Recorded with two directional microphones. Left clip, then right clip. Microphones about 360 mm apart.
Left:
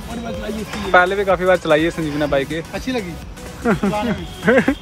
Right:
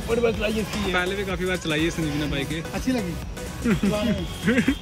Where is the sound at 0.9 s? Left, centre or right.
Centre.